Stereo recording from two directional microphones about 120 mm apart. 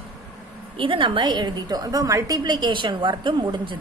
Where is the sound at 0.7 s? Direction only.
45° right (ahead or behind).